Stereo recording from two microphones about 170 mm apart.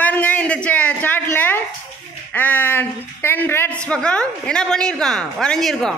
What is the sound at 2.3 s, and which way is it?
A woman's voice, 10° left (ahead or behind).